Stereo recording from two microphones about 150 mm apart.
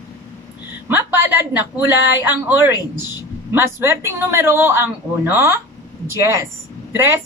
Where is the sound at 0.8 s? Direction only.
15° right (ahead or behind).